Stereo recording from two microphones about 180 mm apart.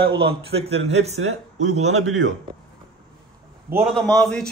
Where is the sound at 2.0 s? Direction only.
90° right.